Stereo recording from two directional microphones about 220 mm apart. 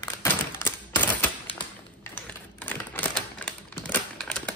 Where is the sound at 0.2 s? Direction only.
10° left (ahead or behind).